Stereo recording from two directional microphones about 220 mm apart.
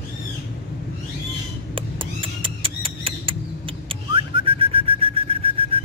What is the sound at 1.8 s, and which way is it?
Bird, 25° right (ahead or behind).